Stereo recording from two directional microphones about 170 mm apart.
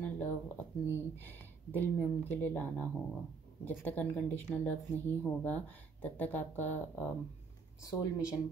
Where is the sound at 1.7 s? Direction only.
10° left (ahead or behind).